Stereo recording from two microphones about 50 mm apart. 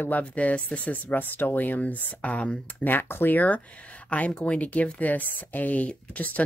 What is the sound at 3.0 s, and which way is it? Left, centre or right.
Speech, left.